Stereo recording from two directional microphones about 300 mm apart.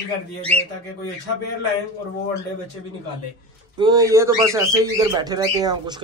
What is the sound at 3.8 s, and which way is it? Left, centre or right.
Speech, centre.